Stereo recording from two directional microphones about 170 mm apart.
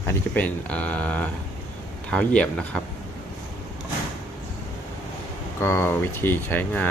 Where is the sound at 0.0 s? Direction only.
10° left (ahead or behind).